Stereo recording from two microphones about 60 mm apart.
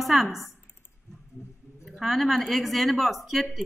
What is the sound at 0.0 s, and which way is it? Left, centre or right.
Speech, centre.